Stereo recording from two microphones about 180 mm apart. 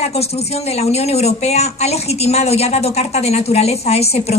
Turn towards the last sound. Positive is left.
turn(degrees=35)  # may be behind; listen again after turning